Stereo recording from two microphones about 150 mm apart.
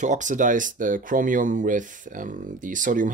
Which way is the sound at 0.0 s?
55° right (ahead or behind).